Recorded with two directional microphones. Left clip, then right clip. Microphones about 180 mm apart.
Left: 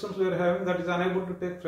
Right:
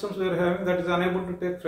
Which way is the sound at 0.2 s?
25° right (ahead or behind).